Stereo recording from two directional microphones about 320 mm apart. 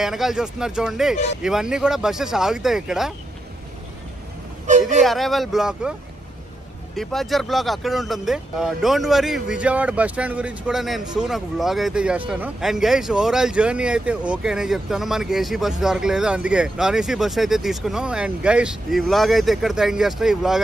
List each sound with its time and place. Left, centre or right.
0.0 s speech: centre
4.6 s speech: right
5.0 s speech: centre
7.0 s speech: centre